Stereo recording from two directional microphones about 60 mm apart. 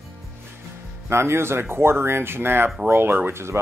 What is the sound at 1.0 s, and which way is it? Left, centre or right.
Speech, right.